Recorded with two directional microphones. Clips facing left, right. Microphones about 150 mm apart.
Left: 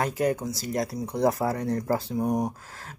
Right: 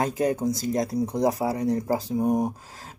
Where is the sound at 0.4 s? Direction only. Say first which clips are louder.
Right 7 dB; 50° right (ahead or behind).